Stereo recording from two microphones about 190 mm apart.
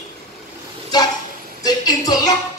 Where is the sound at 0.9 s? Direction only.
20° left (ahead or behind).